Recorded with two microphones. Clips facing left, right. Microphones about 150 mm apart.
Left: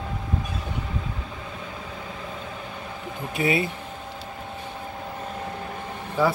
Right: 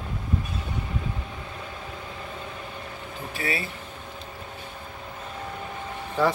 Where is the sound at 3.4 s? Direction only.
20° left (ahead or behind).